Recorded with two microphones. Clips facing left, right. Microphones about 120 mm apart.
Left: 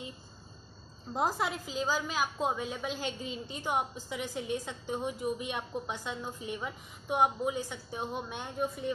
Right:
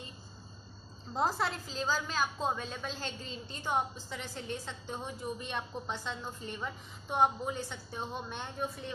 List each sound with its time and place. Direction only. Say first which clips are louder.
1.1 s a woman's voice: left 1 dB; 10° left (ahead or behind)